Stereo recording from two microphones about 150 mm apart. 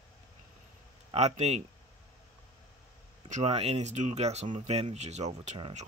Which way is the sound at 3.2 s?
50° right (ahead or behind).